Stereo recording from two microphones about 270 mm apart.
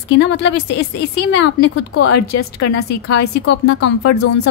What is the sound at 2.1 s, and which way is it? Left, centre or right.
Speech, left.